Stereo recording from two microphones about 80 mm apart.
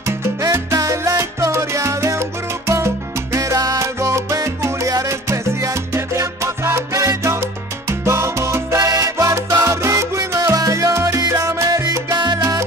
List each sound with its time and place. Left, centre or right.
0.5 s salsa music: right
3.3 s salsa music: right
8.0 s salsa music: right
8.7 s salsa music: right
11.1 s music: right